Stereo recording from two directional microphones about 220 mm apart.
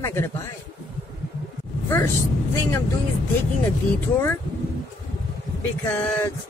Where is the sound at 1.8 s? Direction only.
10° left (ahead or behind).